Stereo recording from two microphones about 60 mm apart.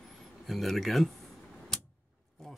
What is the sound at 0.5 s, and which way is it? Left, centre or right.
Speech, centre.